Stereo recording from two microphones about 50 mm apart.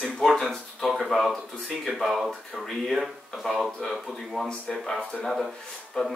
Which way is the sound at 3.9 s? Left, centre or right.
Centre.